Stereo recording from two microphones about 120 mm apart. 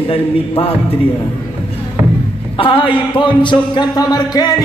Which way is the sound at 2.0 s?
15° right (ahead or behind).